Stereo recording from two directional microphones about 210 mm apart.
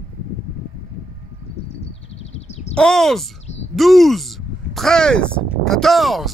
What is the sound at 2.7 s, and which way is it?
Speech, 5° left (ahead or behind).